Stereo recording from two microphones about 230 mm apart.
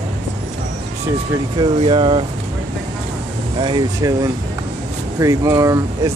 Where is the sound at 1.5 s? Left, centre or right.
Right.